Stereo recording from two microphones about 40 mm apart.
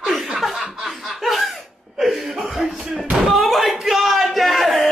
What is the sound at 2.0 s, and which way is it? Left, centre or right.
Cough, centre.